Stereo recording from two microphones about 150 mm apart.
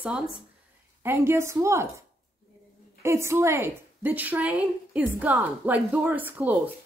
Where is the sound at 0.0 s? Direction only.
5° right (ahead or behind).